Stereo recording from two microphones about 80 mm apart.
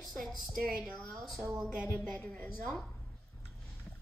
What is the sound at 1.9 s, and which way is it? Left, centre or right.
Speech, centre.